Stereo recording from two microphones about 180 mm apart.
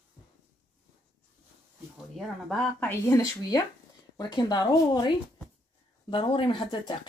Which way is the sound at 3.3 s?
20° left (ahead or behind).